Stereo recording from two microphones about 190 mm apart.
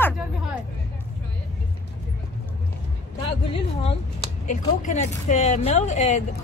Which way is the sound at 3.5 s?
30° left (ahead or behind).